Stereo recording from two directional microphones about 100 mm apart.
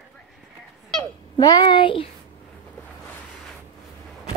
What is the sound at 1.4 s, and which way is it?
Speech, 40° left (ahead or behind).